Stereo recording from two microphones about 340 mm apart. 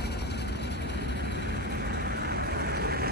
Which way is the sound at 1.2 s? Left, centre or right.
Right.